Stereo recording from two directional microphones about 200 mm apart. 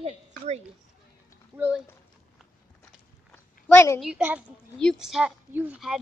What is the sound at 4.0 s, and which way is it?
A woman's voice, 5° right (ahead or behind).